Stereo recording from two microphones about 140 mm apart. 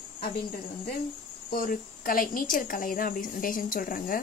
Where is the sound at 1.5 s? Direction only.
80° left.